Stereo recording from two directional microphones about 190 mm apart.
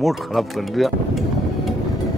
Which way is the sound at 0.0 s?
Centre (ahead or behind).